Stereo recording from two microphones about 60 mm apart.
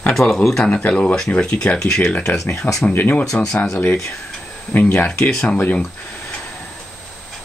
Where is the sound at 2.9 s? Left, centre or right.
Left.